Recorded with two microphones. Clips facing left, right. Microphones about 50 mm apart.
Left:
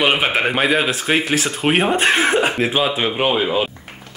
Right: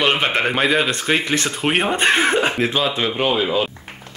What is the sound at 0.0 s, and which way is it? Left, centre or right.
Speech, centre.